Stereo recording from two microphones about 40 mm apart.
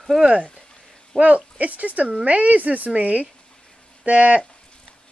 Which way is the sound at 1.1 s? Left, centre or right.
Right.